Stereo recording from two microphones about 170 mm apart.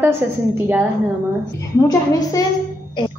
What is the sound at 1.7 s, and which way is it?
Speech, 20° left (ahead or behind).